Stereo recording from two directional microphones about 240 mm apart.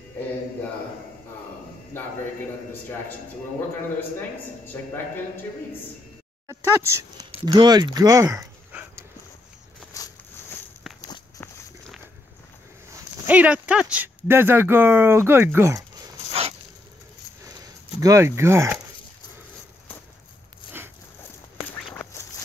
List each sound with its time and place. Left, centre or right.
4.7 s a man's voice: centre
6.4 s speech: centre
9.9 s a sound: centre
11.1 s walk: centre
12.9 s speech: centre
17.5 s a sound: centre
21.6 s duck: centre